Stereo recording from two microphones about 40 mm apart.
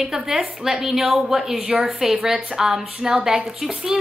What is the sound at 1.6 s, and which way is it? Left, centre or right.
Speech, right.